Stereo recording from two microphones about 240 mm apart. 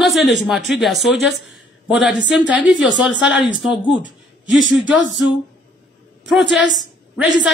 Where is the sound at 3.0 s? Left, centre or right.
Centre.